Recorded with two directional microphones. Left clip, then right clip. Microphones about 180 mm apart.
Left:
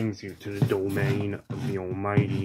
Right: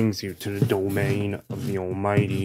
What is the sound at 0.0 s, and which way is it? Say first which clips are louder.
Speech: right 6 dB; 55° right (ahead or behind).